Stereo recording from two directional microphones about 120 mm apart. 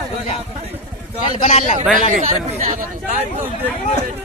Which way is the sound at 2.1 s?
90° right.